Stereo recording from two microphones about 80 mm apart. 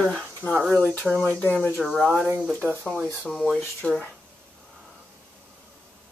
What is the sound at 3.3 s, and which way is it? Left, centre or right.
Speech, centre.